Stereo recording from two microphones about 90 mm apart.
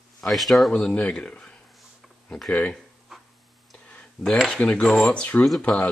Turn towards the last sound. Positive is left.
turn(degrees=0)  # may be behind; listen again after turning